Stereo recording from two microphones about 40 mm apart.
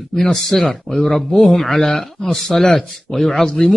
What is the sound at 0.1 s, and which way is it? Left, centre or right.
Speech, centre.